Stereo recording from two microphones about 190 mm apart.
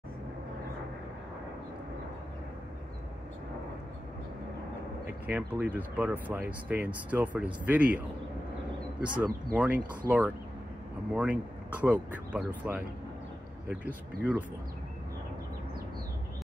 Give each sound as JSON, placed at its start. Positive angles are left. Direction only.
{"t": 5.0, "sound": "speech", "side_deg": -10}
{"t": 9.1, "sound": "speech", "side_deg": -10}